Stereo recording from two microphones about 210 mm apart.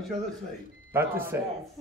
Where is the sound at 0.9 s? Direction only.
10° right (ahead or behind).